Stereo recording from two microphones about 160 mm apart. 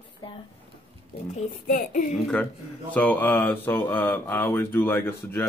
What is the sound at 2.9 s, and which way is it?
Speech, 10° left (ahead or behind).